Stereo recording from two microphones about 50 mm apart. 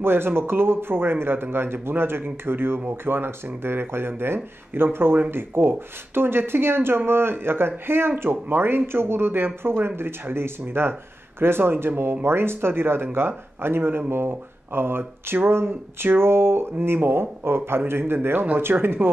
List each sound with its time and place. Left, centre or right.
0.0 s speech: right